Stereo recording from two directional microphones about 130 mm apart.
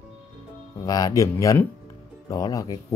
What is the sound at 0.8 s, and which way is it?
Speech, 30° left (ahead or behind).